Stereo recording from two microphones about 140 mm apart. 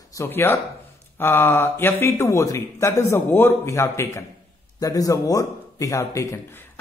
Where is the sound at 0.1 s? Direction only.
20° left (ahead or behind).